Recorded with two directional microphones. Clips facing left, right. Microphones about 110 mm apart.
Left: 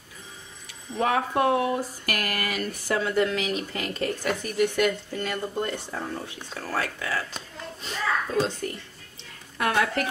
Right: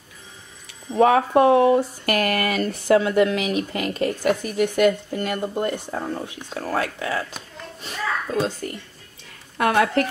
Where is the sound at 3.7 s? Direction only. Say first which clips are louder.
Right 5 dB; 10° right (ahead or behind).